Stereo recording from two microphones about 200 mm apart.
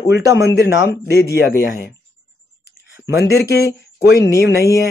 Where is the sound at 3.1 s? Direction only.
55° left (ahead or behind).